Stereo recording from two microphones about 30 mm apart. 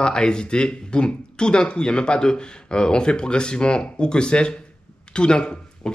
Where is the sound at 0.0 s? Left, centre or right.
Left.